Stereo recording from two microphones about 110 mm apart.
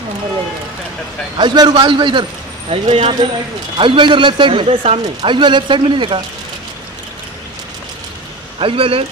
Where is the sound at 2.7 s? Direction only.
65° right (ahead or behind).